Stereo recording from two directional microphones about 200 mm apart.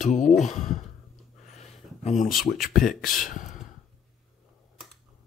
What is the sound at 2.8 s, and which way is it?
Speech, 45° left (ahead or behind).